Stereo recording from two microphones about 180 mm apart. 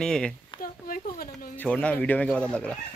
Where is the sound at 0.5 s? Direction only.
50° left (ahead or behind).